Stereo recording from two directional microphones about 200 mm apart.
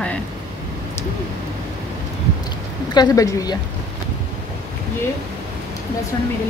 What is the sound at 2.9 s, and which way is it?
Speech, 20° left (ahead or behind).